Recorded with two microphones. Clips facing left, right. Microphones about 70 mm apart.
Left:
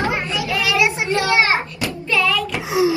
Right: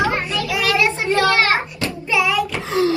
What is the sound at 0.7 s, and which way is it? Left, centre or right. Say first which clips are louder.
Speech: right 1 dB; centre.